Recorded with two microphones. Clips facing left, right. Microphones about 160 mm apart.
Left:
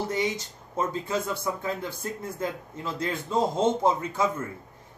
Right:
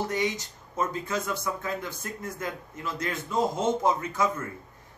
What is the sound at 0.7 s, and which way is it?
Speech, 30° left (ahead or behind).